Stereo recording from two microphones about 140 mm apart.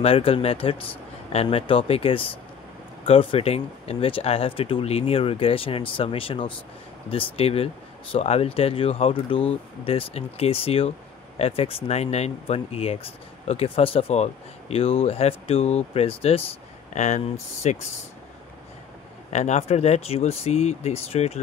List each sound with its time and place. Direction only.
0.0 s speech: 40° left (ahead or behind)
19.3 s speech: 55° left (ahead or behind)